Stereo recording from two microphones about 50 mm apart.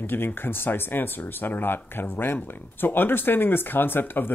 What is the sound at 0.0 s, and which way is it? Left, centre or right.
Speech, left.